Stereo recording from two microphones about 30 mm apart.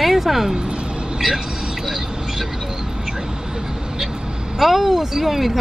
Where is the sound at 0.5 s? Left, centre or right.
Right.